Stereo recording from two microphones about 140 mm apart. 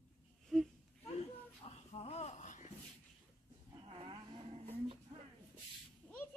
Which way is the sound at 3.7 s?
40° right (ahead or behind).